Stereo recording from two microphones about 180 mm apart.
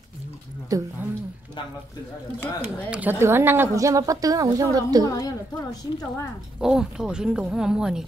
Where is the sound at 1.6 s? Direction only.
25° left (ahead or behind).